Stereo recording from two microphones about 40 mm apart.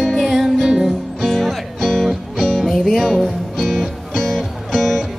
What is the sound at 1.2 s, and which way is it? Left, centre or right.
Music, centre.